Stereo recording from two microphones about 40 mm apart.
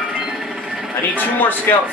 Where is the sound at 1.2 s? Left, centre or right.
Left.